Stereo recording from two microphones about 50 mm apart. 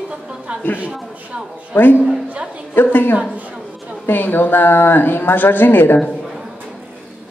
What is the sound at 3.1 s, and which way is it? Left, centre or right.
Speech, right.